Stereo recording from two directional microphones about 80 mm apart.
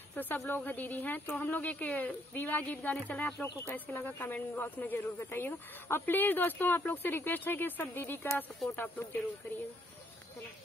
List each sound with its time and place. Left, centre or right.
0.1 s speech: left